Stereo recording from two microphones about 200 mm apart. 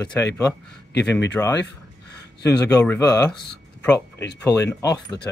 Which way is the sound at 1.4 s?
5° left (ahead or behind).